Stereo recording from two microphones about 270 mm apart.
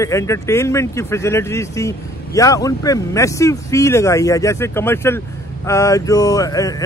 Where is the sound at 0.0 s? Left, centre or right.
Centre.